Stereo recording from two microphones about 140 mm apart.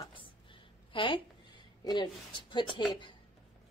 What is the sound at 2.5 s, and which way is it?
Speech, 35° left (ahead or behind).